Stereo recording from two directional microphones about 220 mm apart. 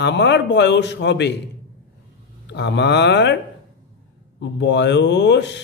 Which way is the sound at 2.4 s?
50° left (ahead or behind).